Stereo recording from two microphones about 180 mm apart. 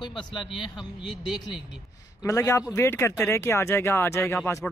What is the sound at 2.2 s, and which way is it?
Speech, 15° left (ahead or behind).